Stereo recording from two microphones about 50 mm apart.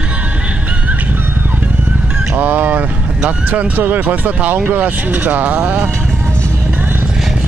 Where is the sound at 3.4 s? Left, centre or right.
Right.